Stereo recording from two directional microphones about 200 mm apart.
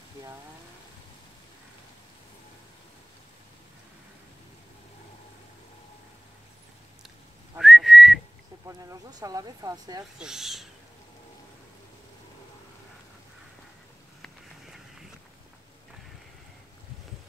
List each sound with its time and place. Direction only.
7.5 s whistling: centre (ahead or behind)
8.6 s speech: 15° right (ahead or behind)
10.1 s speech: 5° right (ahead or behind)
14.2 s a sound: centre (ahead or behind)